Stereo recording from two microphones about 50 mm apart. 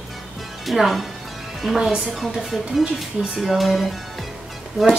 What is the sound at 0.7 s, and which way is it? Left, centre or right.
A woman's voice, centre.